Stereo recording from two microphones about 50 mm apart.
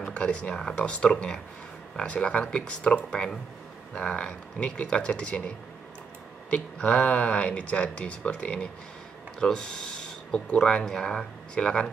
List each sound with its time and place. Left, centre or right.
0.1 s speech: left
6.5 s speech: left